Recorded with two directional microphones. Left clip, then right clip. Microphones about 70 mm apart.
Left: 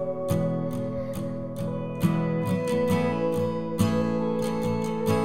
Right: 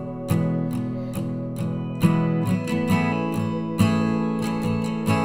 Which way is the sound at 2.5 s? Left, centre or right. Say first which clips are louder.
Left 4 dB; right.